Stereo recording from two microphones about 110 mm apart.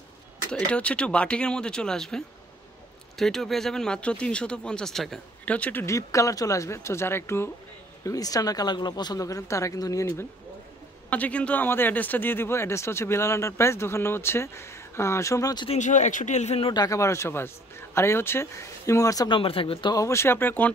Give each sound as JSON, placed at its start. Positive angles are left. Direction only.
{"t": 0.5, "sound": "speech", "side_deg": 10}
{"t": 5.4, "sound": "speech", "side_deg": 15}
{"t": 5.9, "sound": "speech", "side_deg": 30}
{"t": 8.0, "sound": "speech", "side_deg": 30}
{"t": 11.1, "sound": "speech", "side_deg": 15}
{"t": 15.7, "sound": "speech", "side_deg": 90}
{"t": 16.7, "sound": "speech", "side_deg": 30}
{"t": 19.2, "sound": "speech", "side_deg": 50}
{"t": 19.9, "sound": "speech", "side_deg": 30}